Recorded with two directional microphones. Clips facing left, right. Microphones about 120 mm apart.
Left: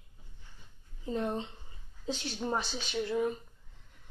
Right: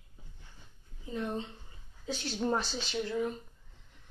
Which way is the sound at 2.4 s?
10° left (ahead or behind).